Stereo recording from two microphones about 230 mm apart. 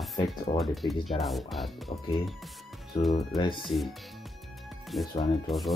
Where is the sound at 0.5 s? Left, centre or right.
Centre.